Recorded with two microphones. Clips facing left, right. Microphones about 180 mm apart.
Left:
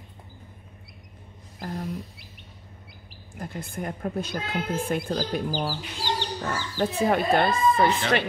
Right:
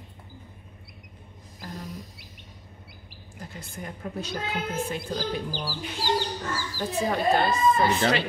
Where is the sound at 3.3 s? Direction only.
50° left (ahead or behind).